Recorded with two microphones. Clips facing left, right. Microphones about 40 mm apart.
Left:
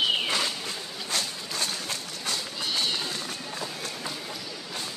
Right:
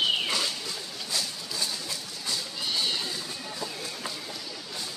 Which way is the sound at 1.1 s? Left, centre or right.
Left.